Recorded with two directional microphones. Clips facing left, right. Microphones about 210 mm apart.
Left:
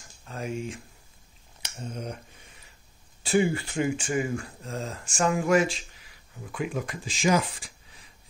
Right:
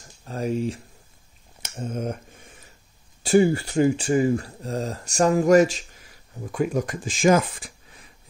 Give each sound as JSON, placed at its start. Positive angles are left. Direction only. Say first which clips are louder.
{"t": 0.2, "sound": "speech", "louder": "right 7 dB", "side_deg": -35}
{"t": 1.6, "sound": "a sound", "louder": "right 7 dB", "side_deg": -50}
{"t": 3.2, "sound": "speech", "louder": "right 6 dB", "side_deg": -40}